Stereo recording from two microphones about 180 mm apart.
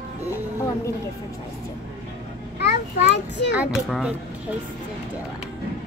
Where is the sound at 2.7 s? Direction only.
75° left (ahead or behind).